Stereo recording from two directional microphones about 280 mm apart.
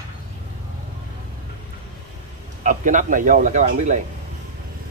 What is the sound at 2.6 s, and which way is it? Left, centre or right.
Speech, right.